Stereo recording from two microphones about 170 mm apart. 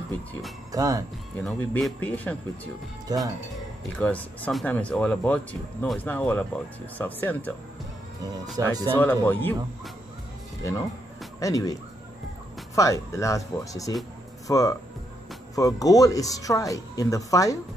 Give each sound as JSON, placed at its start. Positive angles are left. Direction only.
{"t": 0.7, "sound": "speech", "side_deg": -20}
{"t": 1.4, "sound": "speech", "side_deg": 0}
{"t": 3.1, "sound": "speech", "side_deg": -20}
{"t": 4.0, "sound": "speech", "side_deg": 10}
{"t": 8.6, "sound": "speech", "side_deg": -20}
{"t": 8.9, "sound": "speech", "side_deg": 15}
{"t": 11.3, "sound": "speech", "side_deg": 20}
{"t": 12.7, "sound": "speech", "side_deg": 20}